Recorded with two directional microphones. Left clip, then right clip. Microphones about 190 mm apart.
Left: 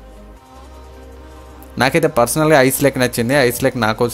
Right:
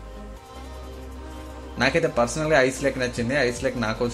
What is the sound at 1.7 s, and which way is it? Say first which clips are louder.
Speech: left 7 dB; 65° left (ahead or behind).